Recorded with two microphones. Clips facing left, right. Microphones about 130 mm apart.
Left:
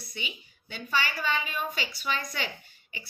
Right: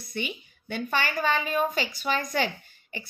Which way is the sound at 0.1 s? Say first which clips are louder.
Right 9 dB; 50° right (ahead or behind).